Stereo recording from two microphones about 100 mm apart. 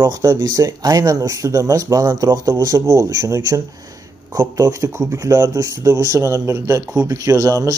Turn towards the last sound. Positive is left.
turn(degrees=-35)  # may be behind; listen again after turning